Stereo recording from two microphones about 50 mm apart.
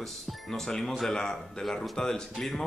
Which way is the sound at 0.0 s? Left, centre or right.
Centre.